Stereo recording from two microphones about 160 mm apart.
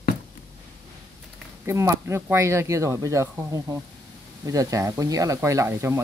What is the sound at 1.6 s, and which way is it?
Speech, 15° right (ahead or behind).